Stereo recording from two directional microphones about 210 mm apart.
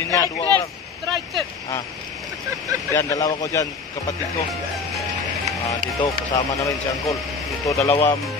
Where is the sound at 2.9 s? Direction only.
15° left (ahead or behind).